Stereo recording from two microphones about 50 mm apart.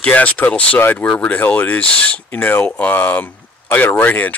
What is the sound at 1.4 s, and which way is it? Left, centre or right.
Speech, left.